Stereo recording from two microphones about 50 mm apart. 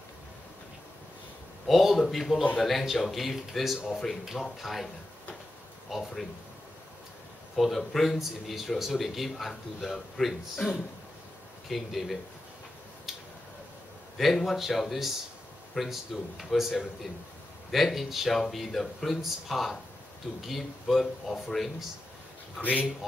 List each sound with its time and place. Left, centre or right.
1.7 s speech: centre
5.9 s speech: centre
7.5 s speech: centre
11.7 s speech: centre
14.1 s speech: centre
22.6 s speech: left